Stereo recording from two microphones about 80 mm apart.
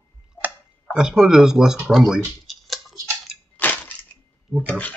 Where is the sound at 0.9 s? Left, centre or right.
Centre.